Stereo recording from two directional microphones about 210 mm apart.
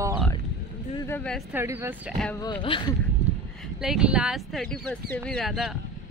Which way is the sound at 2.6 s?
25° left (ahead or behind).